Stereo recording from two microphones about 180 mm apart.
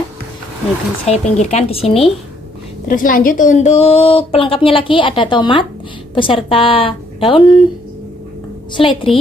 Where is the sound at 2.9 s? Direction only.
50° left (ahead or behind); by 7.4 s 30° left (ahead or behind).